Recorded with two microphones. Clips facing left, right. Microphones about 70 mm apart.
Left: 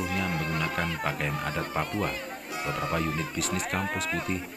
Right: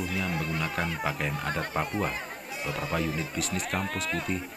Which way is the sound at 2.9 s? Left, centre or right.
Centre.